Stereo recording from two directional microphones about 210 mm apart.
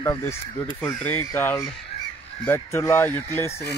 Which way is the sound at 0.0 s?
10° left (ahead or behind).